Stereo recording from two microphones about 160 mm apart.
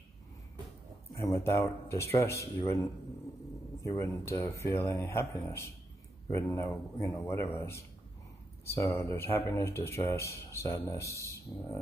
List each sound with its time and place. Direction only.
1.1 s speech: 20° left (ahead or behind)
3.8 s speech: 20° left (ahead or behind)